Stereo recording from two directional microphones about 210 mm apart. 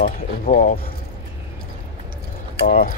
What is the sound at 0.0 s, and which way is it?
Speech, 40° left (ahead or behind).